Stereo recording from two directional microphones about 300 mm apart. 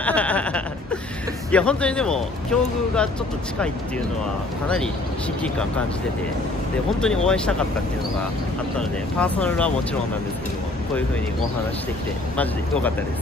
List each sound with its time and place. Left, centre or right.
0.0 s a sound: centre
1.5 s speech: centre
7.0 s speech: centre
8.7 s speech: centre